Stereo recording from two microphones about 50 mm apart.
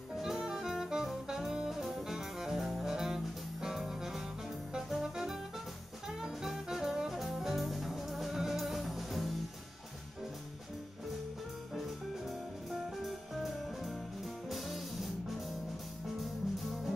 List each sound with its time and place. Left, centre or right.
0.1 s jazz: centre
3.6 s music: centre
12.7 s music: centre